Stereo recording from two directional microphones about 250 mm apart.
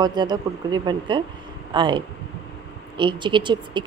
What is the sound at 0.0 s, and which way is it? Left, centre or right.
A woman's voice, centre.